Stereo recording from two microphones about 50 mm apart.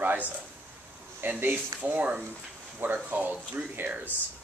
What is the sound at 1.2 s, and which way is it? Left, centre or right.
Speech, right.